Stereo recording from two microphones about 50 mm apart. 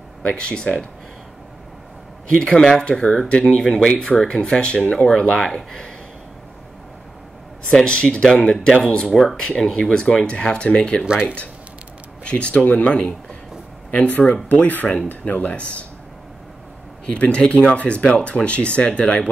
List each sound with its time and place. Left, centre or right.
0.2 s speech: centre
2.3 s speech: centre
7.7 s speech: centre
9.1 s speech: centre
9.8 s speech: centre
12.3 s speech: left
17.0 s speech: left